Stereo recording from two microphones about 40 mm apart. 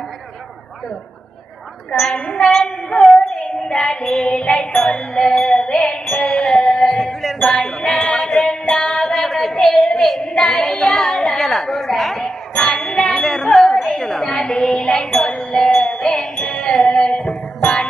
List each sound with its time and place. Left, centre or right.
2.0 s a woman's voice: left
2.5 s child singing: centre
5.3 s music: centre
7.4 s music: centre
8.2 s a sound: centre